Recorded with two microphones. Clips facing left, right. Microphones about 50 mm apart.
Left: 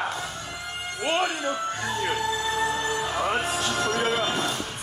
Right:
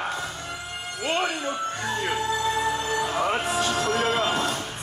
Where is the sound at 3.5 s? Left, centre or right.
Right.